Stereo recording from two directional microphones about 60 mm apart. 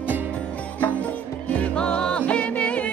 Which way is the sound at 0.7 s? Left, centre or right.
Left.